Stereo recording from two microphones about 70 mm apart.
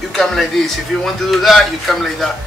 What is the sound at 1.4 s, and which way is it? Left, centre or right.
Speech, centre.